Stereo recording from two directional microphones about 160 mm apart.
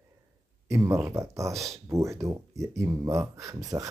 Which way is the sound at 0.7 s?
20° right (ahead or behind).